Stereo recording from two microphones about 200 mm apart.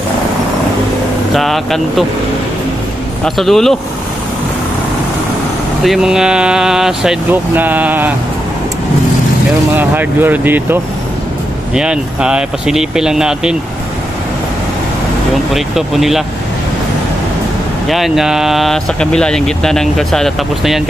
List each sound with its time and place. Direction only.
1.3 s speech: centre (ahead or behind)
3.3 s speech: centre (ahead or behind)
5.9 s speech: 5° right (ahead or behind)
9.8 s speech: 10° right (ahead or behind)
15.5 s speech: centre (ahead or behind)
17.8 s speech: centre (ahead or behind)